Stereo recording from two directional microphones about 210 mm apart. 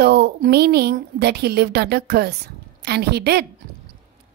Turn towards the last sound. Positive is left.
turn(degrees=-50)  # may be behind; listen again after turning